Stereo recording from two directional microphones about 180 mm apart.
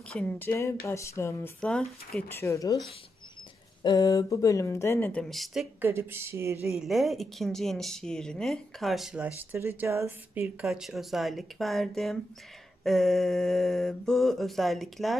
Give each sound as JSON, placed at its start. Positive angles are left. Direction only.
{"t": 0.1, "sound": "speech", "side_deg": 10}
{"t": 3.8, "sound": "speech", "side_deg": 20}
{"t": 6.7, "sound": "speech", "side_deg": 0}